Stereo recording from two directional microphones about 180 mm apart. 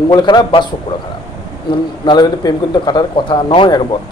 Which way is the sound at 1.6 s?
25° left (ahead or behind).